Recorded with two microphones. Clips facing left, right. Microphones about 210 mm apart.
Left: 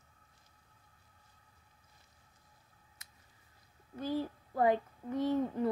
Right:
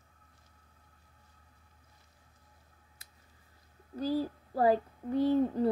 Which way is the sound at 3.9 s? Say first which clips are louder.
Right 4 dB; 35° right (ahead or behind).